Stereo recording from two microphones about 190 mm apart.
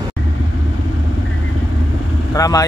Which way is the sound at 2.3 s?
20° left (ahead or behind).